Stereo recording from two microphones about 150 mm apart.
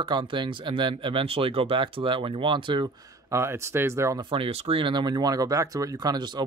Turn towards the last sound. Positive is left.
turn(degrees=-25)  # may be behind; listen again after turning